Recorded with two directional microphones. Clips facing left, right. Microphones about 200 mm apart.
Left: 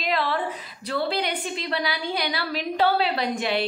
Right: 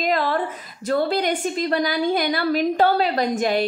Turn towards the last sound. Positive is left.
turn(degrees=-45)  # may be behind; listen again after turning